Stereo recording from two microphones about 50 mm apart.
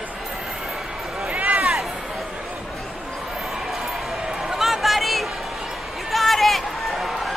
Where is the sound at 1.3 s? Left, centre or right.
Right.